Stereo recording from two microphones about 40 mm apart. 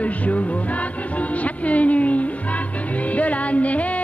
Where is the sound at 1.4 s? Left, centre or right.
Left.